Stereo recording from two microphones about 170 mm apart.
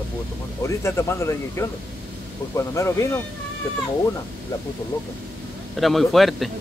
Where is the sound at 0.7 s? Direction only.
15° left (ahead or behind).